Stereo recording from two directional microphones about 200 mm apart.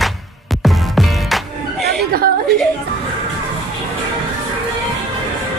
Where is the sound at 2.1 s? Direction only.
50° right (ahead or behind).